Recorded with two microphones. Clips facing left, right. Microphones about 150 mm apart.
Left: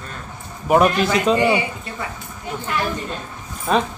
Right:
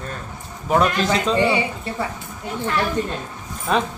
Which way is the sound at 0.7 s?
15° left (ahead or behind).